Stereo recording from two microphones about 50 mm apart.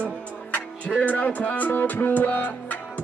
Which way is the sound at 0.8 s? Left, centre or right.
Left.